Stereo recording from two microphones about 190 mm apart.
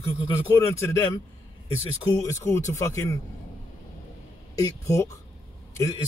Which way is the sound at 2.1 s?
15° left (ahead or behind).